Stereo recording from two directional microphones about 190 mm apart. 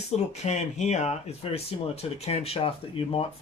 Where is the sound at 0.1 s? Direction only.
35° left (ahead or behind).